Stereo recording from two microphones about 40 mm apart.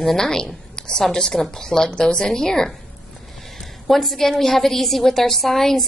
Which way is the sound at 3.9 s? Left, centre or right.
Centre.